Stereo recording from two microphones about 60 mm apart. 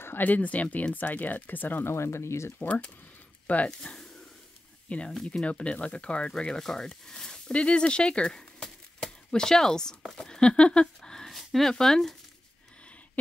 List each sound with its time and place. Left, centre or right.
0.0 s speech: left
1.9 s speech: left
3.4 s speech: left
3.8 s speech: centre